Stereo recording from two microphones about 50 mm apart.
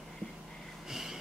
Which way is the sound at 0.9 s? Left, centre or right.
Centre.